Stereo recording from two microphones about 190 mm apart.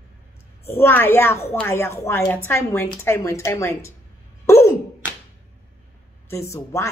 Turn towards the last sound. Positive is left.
turn(degrees=15)  # may be behind; listen again after turning